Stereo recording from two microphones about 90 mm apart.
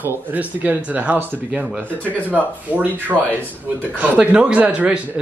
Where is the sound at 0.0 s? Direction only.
20° right (ahead or behind).